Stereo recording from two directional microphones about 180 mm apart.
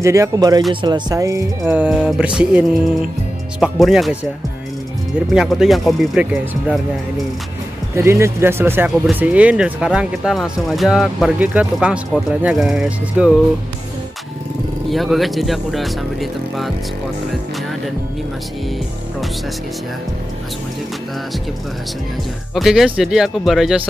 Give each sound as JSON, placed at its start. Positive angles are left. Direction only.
{"t": 0.0, "sound": "speech", "side_deg": -15}
{"t": 5.3, "sound": "speech", "side_deg": -5}
{"t": 7.9, "sound": "speech", "side_deg": -15}
{"t": 14.9, "sound": "speech", "side_deg": 0}
{"t": 22.5, "sound": "speech", "side_deg": 0}